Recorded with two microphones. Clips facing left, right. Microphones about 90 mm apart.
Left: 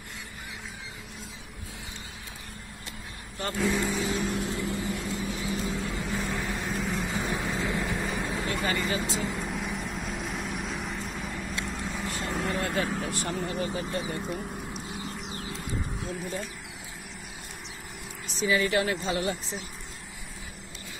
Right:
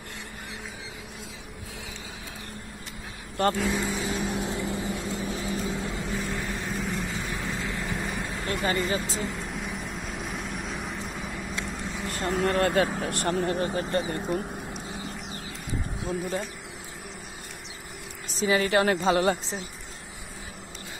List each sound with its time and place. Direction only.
3.5 s speech: 5° right (ahead or behind)
4.4 s vehicle: 20° right (ahead or behind)
6.0 s vehicle: centre (ahead or behind)
7.1 s vehicle: 15° left (ahead or behind); by 12.2 s centre (ahead or behind)
12.3 s speech: centre (ahead or behind)
12.5 s speech: 70° right (ahead or behind); by 14.4 s 50° right (ahead or behind)
18.4 s speech: 40° right (ahead or behind)
19.1 s speech: 70° right (ahead or behind)